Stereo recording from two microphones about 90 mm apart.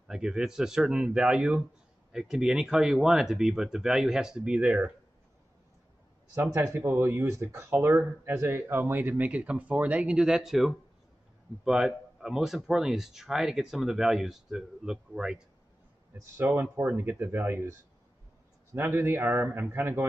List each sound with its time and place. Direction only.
0.1 s speech: 5° right (ahead or behind)
6.3 s speech: 30° right (ahead or behind); by 15.4 s 10° right (ahead or behind)
16.2 s speech: 30° right (ahead or behind)
18.7 s speech: 25° right (ahead or behind)